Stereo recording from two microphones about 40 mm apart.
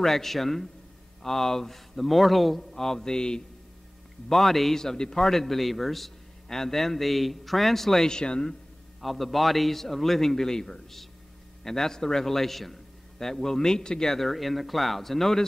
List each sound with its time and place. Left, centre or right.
0.0 s a man's voice: centre
4.3 s a man's voice: centre
5.2 s a man's voice: centre
8.1 s speech: left
9.0 s a man's voice: centre